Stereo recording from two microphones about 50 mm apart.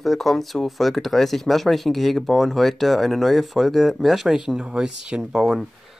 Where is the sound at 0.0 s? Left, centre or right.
Centre.